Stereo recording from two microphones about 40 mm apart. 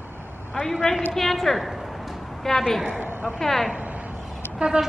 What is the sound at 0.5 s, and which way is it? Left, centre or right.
A woman's voice, centre.